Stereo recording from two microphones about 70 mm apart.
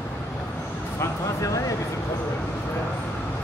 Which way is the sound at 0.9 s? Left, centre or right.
Left.